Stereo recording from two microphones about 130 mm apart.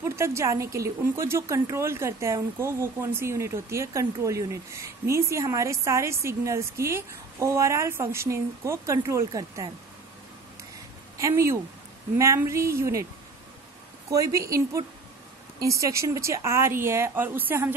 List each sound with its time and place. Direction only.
0.0 s speech: 20° right (ahead or behind)
11.1 s speech: 25° right (ahead or behind)
14.1 s speech: 25° right (ahead or behind)